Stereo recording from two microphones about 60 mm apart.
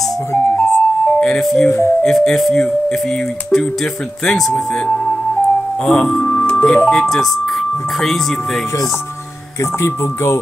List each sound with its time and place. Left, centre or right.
0.5 s music: centre
1.4 s speech: centre
5.9 s speech: centre
6.4 s music: centre
6.9 s speech: centre
9.8 s speech: left